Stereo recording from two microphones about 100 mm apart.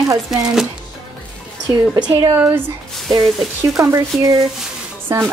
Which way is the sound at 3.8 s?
30° right (ahead or behind).